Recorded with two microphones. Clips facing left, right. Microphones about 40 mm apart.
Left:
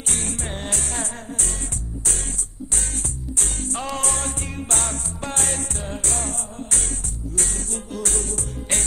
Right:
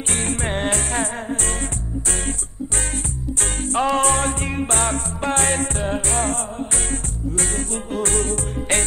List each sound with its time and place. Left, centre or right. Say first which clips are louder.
0.1 s music: right 6 dB; right
3.3 s music: right 8 dB; right